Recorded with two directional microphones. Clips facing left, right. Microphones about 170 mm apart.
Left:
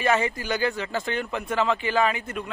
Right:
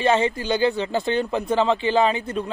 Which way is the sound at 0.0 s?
25° right (ahead or behind).